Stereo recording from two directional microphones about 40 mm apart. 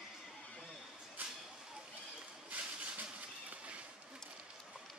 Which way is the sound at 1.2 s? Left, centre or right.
Right.